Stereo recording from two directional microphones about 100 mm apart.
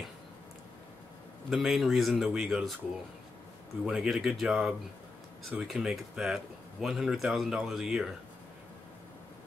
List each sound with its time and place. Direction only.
1.5 s speech: centre (ahead or behind)
3.8 s speech: 5° right (ahead or behind)